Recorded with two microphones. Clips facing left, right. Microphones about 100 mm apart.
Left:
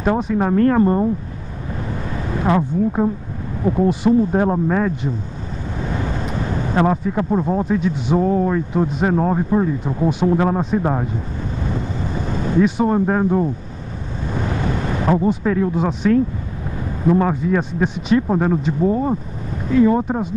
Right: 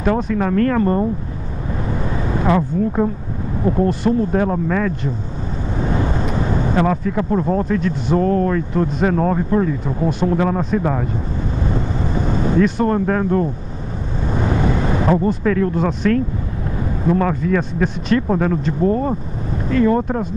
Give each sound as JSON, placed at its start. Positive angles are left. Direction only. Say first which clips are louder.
{"t": 0.0, "sound": "speech", "louder": "even", "side_deg": 15}
{"t": 2.4, "sound": "speech", "louder": "even", "side_deg": 5}
{"t": 4.4, "sound": "speech", "louder": "left 1 dB", "side_deg": 20}
{"t": 6.7, "sound": "speech", "louder": "left 2 dB", "side_deg": 20}
{"t": 7.2, "sound": "speech", "louder": "right 1 dB", "side_deg": 5}
{"t": 12.5, "sound": "speech", "louder": "left 1 dB", "side_deg": 10}
{"t": 13.0, "sound": "speech", "louder": "left 1 dB", "side_deg": 20}
{"t": 15.0, "sound": "speech", "louder": "left 1 dB", "side_deg": 10}